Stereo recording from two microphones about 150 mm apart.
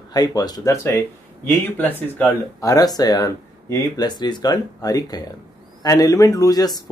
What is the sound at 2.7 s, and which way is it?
Speech, 25° left (ahead or behind).